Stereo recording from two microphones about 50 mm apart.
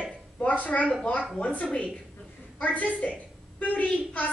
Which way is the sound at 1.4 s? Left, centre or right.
Left.